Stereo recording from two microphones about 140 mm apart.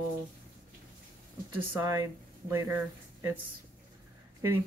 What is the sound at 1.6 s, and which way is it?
Speech, 20° right (ahead or behind).